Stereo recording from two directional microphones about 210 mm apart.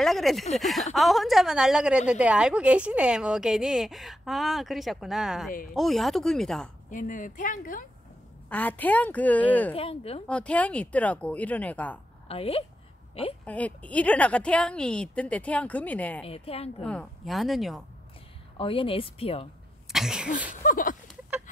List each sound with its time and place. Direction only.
0.0 s a woman's voice: centre (ahead or behind)
6.9 s speech: 40° left (ahead or behind)
8.5 s a woman's voice: 10° left (ahead or behind)
9.8 s speech: 25° left (ahead or behind)
10.2 s a woman's voice: 5° left (ahead or behind)
12.3 s speech: 25° left (ahead or behind)
13.5 s a woman's voice: 5° left (ahead or behind)
16.3 s speech: 30° left (ahead or behind)
16.8 s a woman's voice: 5° left (ahead or behind)
18.6 s speech: 25° left (ahead or behind)
19.9 s a woman's voice: centre (ahead or behind)
20.6 s speech: 40° left (ahead or behind)